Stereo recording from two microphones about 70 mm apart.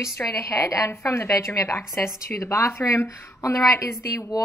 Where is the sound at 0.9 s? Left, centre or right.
Left.